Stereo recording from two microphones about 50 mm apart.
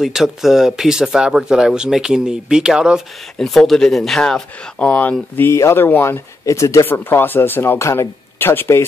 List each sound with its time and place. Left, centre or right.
0.0 s speech: centre
3.3 s speech: centre
4.7 s speech: left
5.5 s speech: left
5.8 s speech: left
6.0 s speech: left
6.9 s speech: left
7.8 s speech: left
8.4 s speech: left